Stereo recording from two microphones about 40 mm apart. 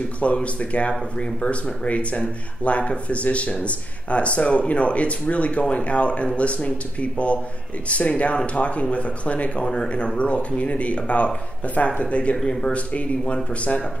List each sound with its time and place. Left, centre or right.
0.2 s speech: left
12.4 s speech: centre
12.7 s speech: left